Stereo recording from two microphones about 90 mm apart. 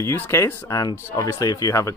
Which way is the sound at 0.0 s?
30° left (ahead or behind).